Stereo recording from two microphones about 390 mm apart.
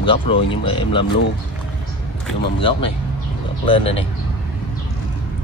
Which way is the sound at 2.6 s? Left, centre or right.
Centre.